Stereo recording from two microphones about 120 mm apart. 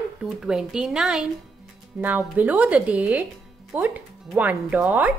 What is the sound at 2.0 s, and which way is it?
A woman's voice, 15° right (ahead or behind).